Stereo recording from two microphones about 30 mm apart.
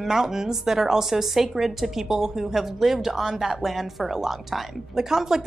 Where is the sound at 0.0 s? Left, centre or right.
Centre.